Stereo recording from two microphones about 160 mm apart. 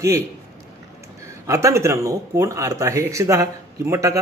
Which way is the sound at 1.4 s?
20° right (ahead or behind).